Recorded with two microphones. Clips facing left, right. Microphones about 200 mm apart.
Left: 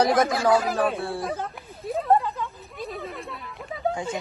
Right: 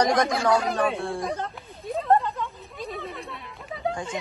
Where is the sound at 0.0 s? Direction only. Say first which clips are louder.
Left 1 dB; 5° left (ahead or behind).